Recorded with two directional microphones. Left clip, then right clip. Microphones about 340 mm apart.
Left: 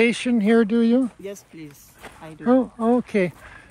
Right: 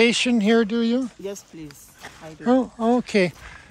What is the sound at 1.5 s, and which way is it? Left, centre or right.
Speech, centre.